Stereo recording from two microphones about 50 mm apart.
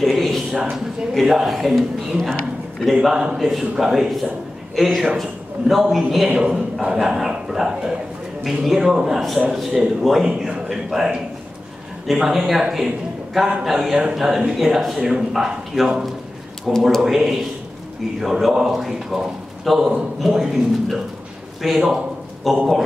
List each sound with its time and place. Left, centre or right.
0.0 s a sound: centre
1.1 s a man's voice: centre
3.1 s a man's voice: centre
3.3 s a man's voice: centre
6.2 s a man's voice: centre
21.6 s a man's voice: centre